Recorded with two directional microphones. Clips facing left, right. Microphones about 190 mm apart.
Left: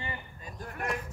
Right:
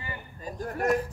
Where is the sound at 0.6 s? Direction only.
40° right (ahead or behind).